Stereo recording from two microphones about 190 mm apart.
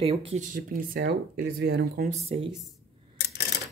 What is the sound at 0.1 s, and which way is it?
Speech, 35° right (ahead or behind).